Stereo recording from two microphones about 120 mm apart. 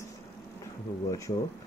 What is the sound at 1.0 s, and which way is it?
Speech, 25° left (ahead or behind).